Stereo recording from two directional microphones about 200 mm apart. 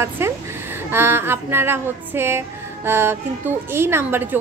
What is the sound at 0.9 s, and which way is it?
Female singing, 10° right (ahead or behind).